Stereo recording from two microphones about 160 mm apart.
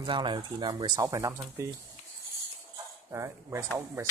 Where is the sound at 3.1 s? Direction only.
15° right (ahead or behind).